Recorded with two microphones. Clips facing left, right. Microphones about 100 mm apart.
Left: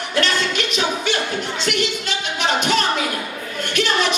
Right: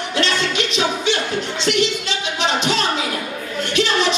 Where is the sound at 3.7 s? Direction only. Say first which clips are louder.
Right 1 dB; 55° left (ahead or behind).